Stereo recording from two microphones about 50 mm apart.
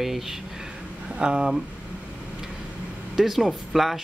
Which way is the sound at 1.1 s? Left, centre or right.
Right.